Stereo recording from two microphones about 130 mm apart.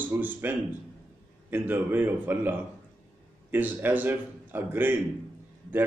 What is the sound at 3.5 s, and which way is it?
A man's voice, 15° right (ahead or behind).